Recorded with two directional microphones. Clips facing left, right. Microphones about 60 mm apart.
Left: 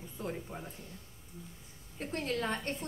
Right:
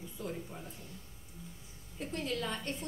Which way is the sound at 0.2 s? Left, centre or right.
Left.